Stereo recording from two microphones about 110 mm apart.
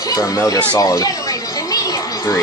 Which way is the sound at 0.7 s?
30° left (ahead or behind).